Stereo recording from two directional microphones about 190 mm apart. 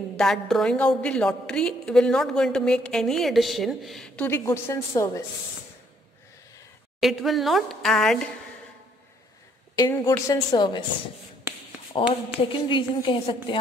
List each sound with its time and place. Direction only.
0.2 s a woman's voice: centre (ahead or behind)
7.0 s a woman's voice: centre (ahead or behind)
9.8 s a woman's voice: 15° left (ahead or behind)
11.9 s a woman's voice: 30° left (ahead or behind)